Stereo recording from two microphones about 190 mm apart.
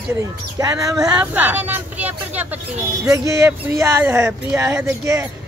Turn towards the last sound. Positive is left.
turn(degrees=-15)  # may be behind; listen again after turning